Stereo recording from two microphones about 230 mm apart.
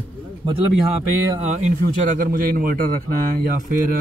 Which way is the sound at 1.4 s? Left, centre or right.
Right.